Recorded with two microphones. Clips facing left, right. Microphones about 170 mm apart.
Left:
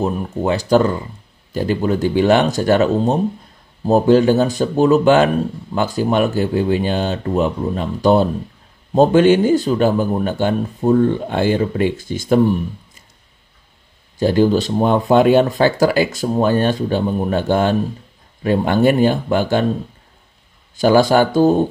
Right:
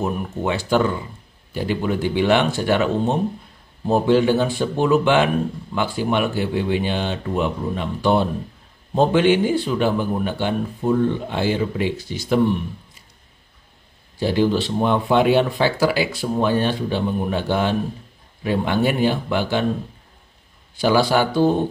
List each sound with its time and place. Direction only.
0.0 s speech: 35° left (ahead or behind)
14.1 s speech: 45° left (ahead or behind)
20.7 s speech: 45° left (ahead or behind)